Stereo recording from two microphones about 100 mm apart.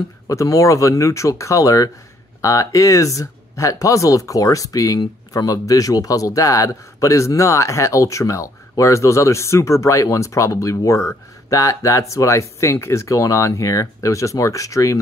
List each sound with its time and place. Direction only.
0.3 s a man's voice: 35° left (ahead or behind)